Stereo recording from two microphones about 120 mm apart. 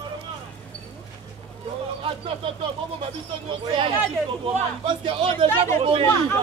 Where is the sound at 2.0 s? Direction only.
50° right (ahead or behind).